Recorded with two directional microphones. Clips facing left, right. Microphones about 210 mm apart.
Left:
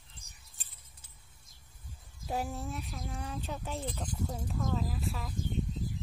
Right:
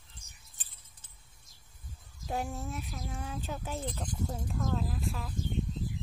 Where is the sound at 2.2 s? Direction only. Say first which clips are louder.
Even; centre (ahead or behind).